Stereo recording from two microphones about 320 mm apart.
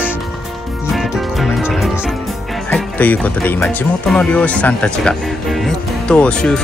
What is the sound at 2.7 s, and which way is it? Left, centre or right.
Speech, centre.